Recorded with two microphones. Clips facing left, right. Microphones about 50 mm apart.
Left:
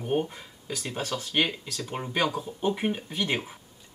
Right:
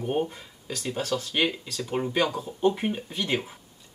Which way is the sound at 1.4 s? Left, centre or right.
Centre.